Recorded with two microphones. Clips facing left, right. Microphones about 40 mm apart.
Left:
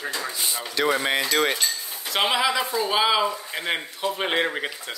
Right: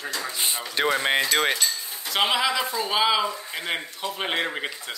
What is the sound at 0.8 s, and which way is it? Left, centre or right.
Speech, right.